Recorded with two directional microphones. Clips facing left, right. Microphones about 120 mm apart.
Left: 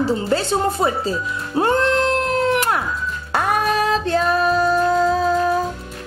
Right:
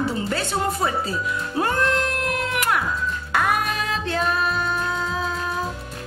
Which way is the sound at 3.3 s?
35° left (ahead or behind).